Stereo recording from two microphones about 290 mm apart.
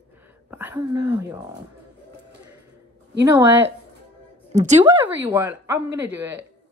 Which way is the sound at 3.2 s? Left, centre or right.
Centre.